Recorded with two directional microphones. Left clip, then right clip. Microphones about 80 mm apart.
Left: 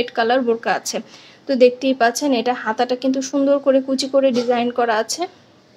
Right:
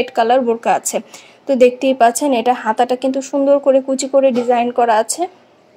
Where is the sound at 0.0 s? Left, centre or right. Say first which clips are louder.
Right 4 dB; right.